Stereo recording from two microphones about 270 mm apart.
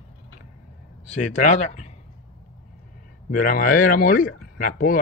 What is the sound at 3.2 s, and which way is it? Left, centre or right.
Speech, left.